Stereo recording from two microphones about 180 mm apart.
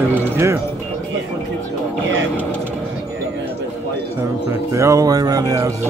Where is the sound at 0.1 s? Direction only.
15° right (ahead or behind).